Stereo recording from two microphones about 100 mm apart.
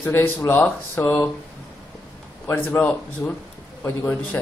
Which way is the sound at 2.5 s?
15° left (ahead or behind).